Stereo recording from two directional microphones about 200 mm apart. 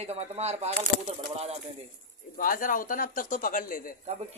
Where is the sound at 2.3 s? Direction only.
45° left (ahead or behind).